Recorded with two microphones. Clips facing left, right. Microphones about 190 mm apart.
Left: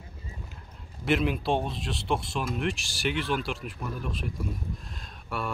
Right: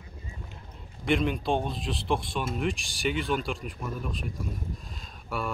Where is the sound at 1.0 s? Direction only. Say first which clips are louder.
Even; 5° left (ahead or behind).